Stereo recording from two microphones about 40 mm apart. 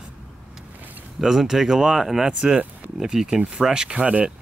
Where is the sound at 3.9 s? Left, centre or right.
Right.